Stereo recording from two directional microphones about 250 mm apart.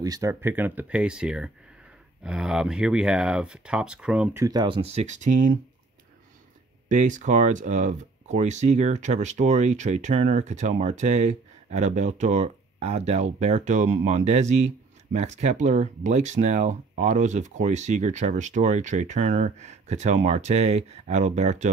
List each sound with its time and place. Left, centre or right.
0.0 s speech: centre; by 5.6 s right
6.9 s speech: right